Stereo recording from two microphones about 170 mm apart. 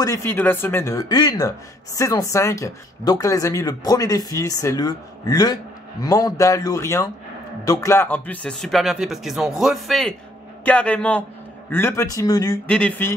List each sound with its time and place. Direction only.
0.0 s speech: 15° left (ahead or behind)
12.6 s speech: 5° left (ahead or behind)